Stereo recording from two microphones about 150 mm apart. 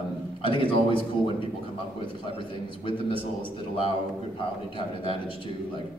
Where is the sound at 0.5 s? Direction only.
35° left (ahead or behind).